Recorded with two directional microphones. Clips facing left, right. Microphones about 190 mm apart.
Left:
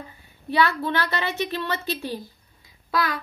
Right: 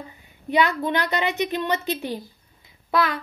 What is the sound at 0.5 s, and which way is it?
A woman's voice, 20° right (ahead or behind).